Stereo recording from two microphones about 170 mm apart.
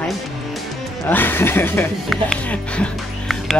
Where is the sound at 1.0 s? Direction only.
10° left (ahead or behind).